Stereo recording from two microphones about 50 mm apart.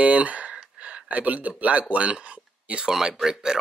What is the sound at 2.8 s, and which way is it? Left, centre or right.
Speech, centre.